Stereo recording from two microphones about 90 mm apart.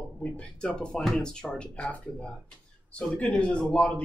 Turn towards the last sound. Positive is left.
turn(degrees=15)  # may be behind; listen again after turning